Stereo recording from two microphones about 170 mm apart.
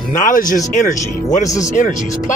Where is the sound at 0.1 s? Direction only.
50° left (ahead or behind).